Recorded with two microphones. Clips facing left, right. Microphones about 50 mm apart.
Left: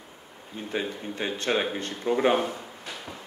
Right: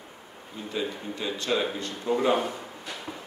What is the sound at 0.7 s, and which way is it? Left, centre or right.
A man's voice, left.